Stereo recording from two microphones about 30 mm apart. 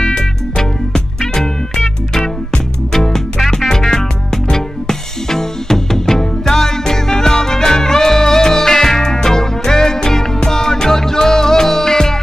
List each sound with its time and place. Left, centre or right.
0.1 s music: left